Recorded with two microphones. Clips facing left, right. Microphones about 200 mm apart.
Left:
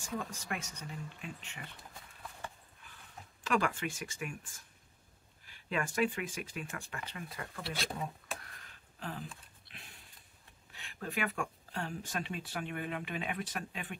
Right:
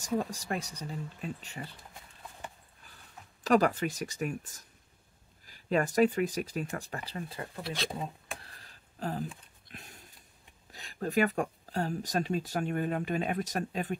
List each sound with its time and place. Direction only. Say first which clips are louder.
0.0 s speech: right 8 dB; 40° right (ahead or behind)
3.4 s speech: right 7 dB; 40° right (ahead or behind)
8.4 s a sound: right 1 dB; 35° right (ahead or behind)
10.7 s speech: right 8 dB; 40° right (ahead or behind)